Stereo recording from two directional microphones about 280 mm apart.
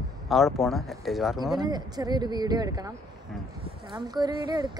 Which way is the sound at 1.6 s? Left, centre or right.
Centre.